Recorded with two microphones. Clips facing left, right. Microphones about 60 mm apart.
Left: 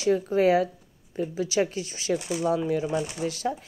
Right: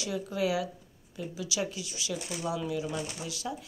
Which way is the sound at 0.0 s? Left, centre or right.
Left.